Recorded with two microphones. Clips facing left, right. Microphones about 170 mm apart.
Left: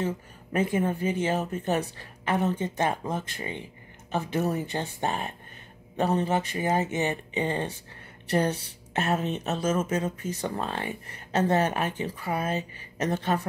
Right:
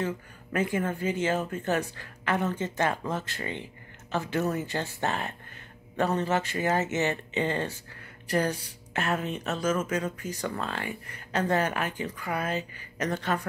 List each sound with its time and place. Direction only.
0.6 s speech: 20° left (ahead or behind)